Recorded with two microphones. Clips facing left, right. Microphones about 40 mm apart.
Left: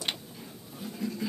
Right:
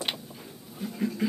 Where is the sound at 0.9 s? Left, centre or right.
Right.